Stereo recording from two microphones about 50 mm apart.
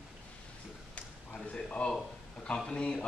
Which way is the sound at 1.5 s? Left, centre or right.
Left.